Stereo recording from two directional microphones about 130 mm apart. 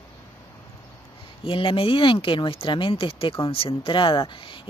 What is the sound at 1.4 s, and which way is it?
Speech, 45° left (ahead or behind).